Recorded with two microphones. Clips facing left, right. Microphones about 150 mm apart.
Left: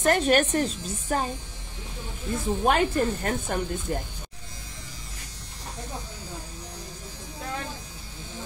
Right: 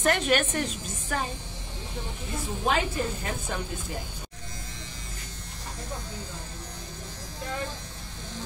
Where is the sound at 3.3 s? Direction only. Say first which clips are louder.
Left 5 dB; 55° left (ahead or behind).